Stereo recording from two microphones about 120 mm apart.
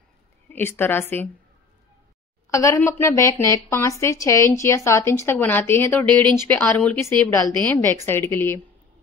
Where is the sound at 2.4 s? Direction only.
25° left (ahead or behind).